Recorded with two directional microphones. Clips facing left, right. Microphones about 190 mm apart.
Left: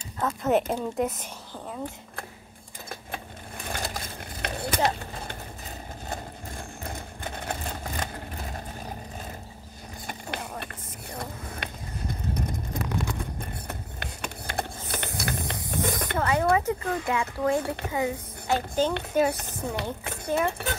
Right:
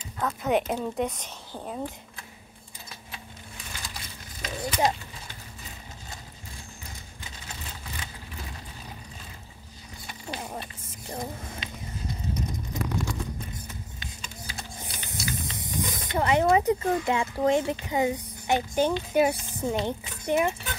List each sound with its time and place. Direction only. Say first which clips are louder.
0.2 s a woman's voice: left 2 dB; centre (ahead or behind)
2.9 s a sound: left 8 dB; 50° left (ahead or behind)
6.0 s vehicle: left 9 dB; 55° left (ahead or behind)
10.0 s a sound: left 1 dB; 60° left (ahead or behind)
15.7 s snake: left 4 dB; 60° left (ahead or behind)
16.2 s a sound: right 3 dB; 20° right (ahead or behind)
16.5 s speech: right 3 dB; 20° right (ahead or behind)
19.3 s speech: right 3 dB; 65° left (ahead or behind)
20.2 s speech: right 2 dB; 15° right (ahead or behind)